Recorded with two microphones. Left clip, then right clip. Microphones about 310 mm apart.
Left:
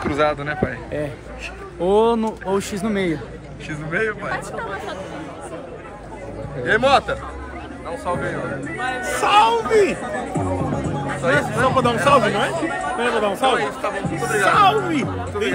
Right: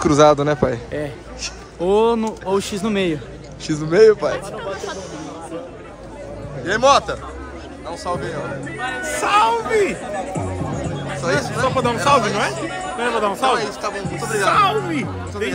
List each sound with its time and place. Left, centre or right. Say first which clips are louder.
0.0 s a man's voice: right 7 dB; centre
6.6 s a man's voice: right 1 dB; centre
8.7 s speech: left 1 dB; centre
11.2 s speech: left 2 dB; centre